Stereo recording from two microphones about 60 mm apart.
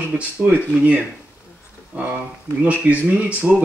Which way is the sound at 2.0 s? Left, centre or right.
Right.